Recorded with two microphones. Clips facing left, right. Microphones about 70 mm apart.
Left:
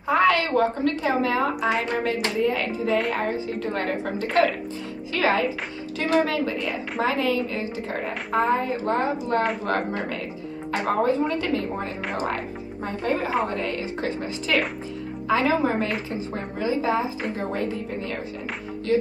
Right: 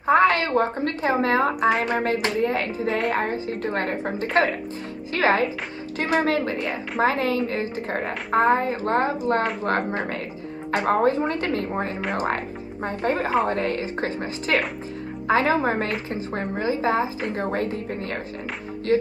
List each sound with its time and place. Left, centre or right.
0.0 s a woman's voice: right
1.8 s hands: right
2.4 s a woman's voice: right
9.7 s hands: right
11.0 s a woman's voice: right
17.4 s hands: right